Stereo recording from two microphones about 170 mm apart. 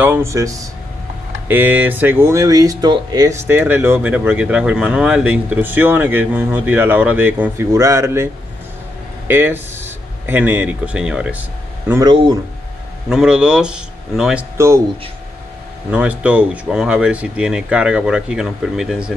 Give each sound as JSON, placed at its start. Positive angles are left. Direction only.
{"t": 0.0, "sound": "speech", "side_deg": -15}
{"t": 9.3, "sound": "speech", "side_deg": -15}
{"t": 11.9, "sound": "speech", "side_deg": -25}
{"t": 13.1, "sound": "speech", "side_deg": -5}
{"t": 15.9, "sound": "speech", "side_deg": -5}